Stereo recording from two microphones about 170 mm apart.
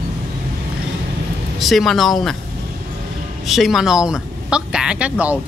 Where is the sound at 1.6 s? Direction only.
Centre (ahead or behind).